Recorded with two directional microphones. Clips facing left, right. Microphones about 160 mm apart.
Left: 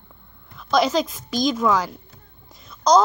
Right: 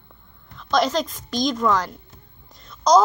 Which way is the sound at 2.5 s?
5° left (ahead or behind).